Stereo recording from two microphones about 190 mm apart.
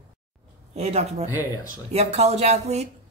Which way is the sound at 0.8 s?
35° right (ahead or behind).